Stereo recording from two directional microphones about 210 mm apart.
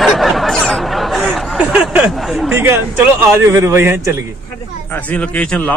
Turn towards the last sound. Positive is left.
turn(degrees=5)  # may be behind; listen again after turning